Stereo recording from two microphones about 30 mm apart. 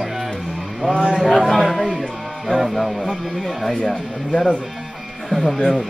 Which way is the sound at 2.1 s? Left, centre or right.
Centre.